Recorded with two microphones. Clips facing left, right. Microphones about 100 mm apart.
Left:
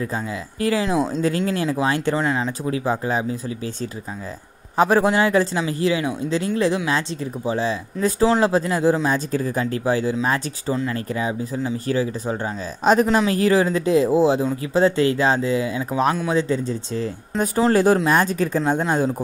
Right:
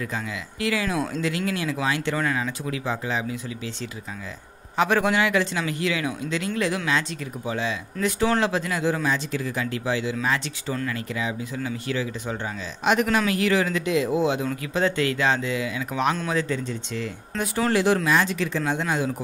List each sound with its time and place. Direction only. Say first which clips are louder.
0.0 s speech: left 4 dB; 30° left (ahead or behind)
2.1 s speech: left 4 dB; 25° left (ahead or behind)
4.7 s speech: left 4 dB; 35° left (ahead or behind)
10.7 s speech: left 5 dB; 25° left (ahead or behind)
11.0 s speech: left 5 dB; 35° left (ahead or behind)